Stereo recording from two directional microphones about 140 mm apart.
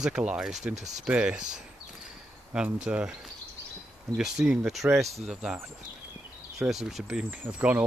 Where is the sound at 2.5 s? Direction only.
5° right (ahead or behind).